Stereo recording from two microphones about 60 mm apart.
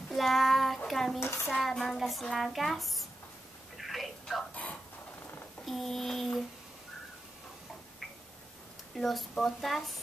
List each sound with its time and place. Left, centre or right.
0.1 s child singing: centre
0.8 s speech: centre
1.2 s child singing: left
1.5 s a child's voice: centre
3.7 s telephone: centre
5.7 s speech: centre
8.9 s speech: centre